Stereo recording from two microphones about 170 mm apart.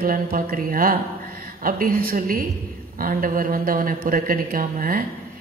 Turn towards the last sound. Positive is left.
turn(degrees=-55)  # may be behind; listen again after turning